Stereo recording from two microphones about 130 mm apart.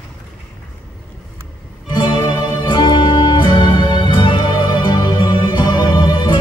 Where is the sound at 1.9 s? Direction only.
35° left (ahead or behind).